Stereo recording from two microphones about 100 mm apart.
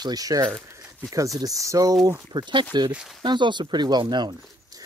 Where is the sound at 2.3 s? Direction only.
50° right (ahead or behind).